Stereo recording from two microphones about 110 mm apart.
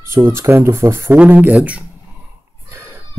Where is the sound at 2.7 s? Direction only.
25° right (ahead or behind).